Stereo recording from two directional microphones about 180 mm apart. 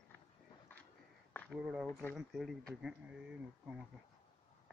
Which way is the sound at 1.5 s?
5° right (ahead or behind).